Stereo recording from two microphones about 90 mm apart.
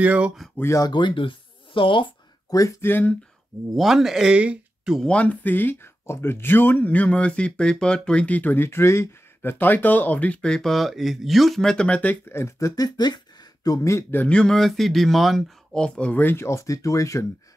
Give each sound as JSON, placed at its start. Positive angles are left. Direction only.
{"t": 0.0, "sound": "speech", "side_deg": -15}
{"t": 0.6, "sound": "a man's voice", "side_deg": 30}
{"t": 0.8, "sound": "speech", "side_deg": 60}
{"t": 2.8, "sound": "speech", "side_deg": 20}
{"t": 3.7, "sound": "speech", "side_deg": 0}
{"t": 5.0, "sound": "speech", "side_deg": 15}
{"t": 13.8, "sound": "a man's voice", "side_deg": 30}
{"t": 14.2, "sound": "speech", "side_deg": 10}